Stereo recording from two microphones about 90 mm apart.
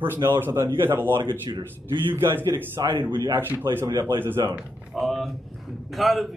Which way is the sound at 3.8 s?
35° right (ahead or behind).